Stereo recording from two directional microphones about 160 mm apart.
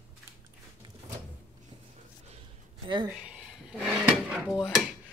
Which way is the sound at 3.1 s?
5° right (ahead or behind).